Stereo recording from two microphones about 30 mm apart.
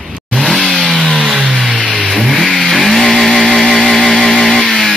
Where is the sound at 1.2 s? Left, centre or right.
Right.